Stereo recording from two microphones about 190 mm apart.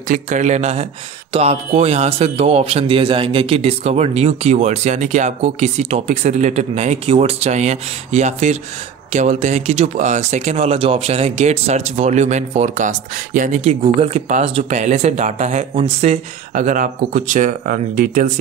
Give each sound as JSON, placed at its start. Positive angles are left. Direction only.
{"t": 0.1, "sound": "speech", "side_deg": -40}